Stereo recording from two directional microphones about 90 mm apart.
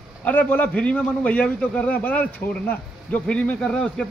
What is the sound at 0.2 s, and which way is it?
A man's voice, 15° left (ahead or behind).